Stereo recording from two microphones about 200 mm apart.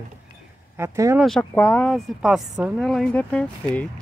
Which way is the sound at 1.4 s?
10° left (ahead or behind).